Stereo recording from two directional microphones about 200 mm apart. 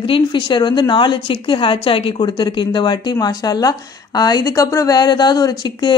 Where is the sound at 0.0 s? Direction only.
25° left (ahead or behind).